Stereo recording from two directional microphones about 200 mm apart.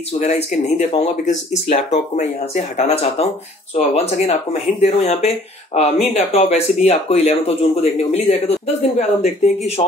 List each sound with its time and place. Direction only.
0.2 s speech: 35° left (ahead or behind)